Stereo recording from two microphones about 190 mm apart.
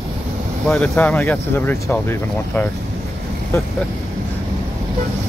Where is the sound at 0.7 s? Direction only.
10° left (ahead or behind).